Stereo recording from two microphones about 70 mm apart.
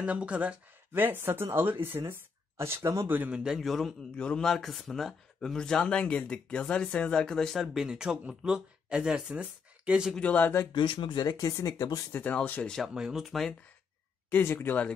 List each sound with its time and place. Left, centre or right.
0.0 s speech: centre
0.9 s speech: right
3.3 s a man's voice: centre
3.5 s speech: centre
10.1 s speech: centre
10.7 s speech: left
12.1 s speech: left
12.4 s speech: centre
12.9 s speech: centre
14.3 s speech: left